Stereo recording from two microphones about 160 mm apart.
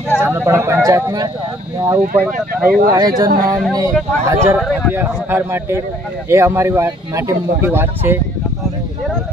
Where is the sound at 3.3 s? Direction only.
60° right (ahead or behind).